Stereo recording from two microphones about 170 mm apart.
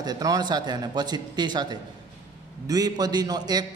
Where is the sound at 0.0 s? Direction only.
20° right (ahead or behind).